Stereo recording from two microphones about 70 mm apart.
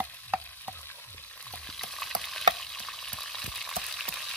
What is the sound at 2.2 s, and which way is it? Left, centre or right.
Frying, centre.